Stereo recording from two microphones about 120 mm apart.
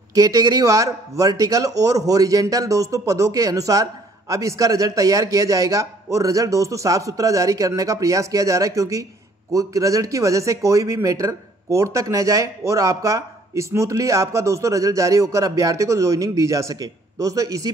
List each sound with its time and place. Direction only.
0.1 s a man's voice: 30° right (ahead or behind)